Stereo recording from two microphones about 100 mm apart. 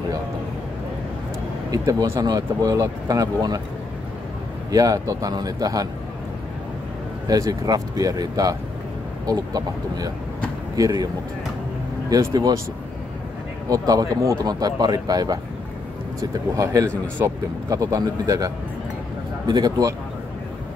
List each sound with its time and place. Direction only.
1.7 s speech: 40° right (ahead or behind)
4.6 s speech: 40° right (ahead or behind)
7.2 s speech: 40° right (ahead or behind)
12.1 s speech: 40° right (ahead or behind)
13.7 s speech: 40° right (ahead or behind)